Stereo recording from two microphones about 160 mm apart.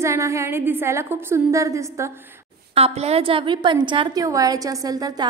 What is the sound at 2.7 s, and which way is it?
A woman's voice, 40° right (ahead or behind).